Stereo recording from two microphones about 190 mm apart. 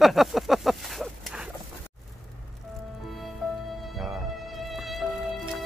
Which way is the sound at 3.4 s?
Centre (ahead or behind).